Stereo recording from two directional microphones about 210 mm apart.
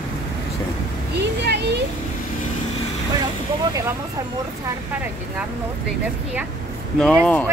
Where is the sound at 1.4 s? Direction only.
55° right (ahead or behind).